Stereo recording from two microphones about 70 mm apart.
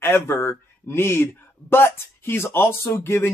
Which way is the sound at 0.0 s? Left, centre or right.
Left.